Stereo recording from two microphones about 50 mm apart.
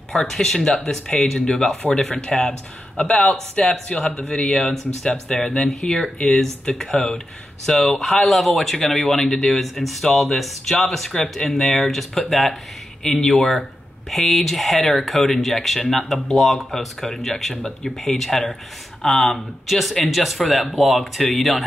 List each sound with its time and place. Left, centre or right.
0.1 s speech: centre
4.2 s speech: left
4.5 s speech: centre